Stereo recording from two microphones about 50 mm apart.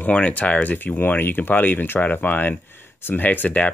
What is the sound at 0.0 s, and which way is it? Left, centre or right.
Speech, left.